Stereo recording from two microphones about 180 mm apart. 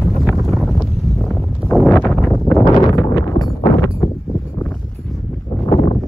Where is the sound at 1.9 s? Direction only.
10° left (ahead or behind).